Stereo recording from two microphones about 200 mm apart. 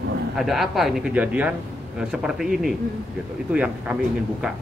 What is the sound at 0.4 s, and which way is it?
Speech, centre (ahead or behind).